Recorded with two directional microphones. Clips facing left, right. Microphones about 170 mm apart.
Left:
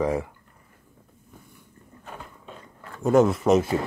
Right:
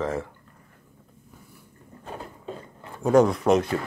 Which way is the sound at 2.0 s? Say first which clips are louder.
Right 4 dB; 35° right (ahead or behind).